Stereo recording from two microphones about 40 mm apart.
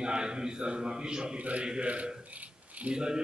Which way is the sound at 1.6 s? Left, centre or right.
Right.